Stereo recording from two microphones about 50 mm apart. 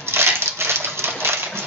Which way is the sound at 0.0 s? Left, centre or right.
Right.